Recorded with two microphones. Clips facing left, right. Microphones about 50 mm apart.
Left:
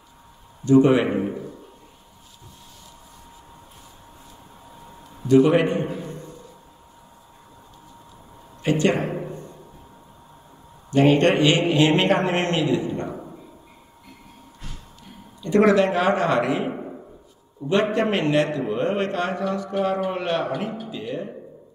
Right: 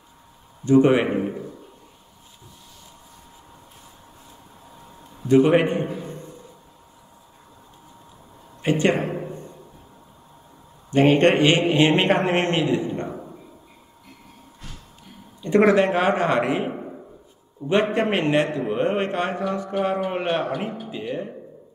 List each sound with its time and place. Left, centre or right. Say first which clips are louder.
0.7 s a man's voice: even; right
1.0 s a man's voice: even; centre
5.2 s a man's voice: even; right
8.6 s a man's voice: even; right
9.0 s a sound: even; centre
10.9 s a man's voice: right 1 dB; right
15.4 s a man's voice: even; right
16.7 s a sound: left 1 dB; centre
17.6 s a man's voice: even; right
20.9 s speech: right 1 dB; centre